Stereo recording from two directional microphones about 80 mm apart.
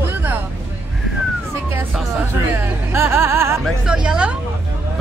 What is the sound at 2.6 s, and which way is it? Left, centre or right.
Music, right.